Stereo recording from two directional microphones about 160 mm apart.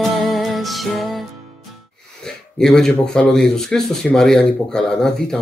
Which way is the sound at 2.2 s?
5° left (ahead or behind).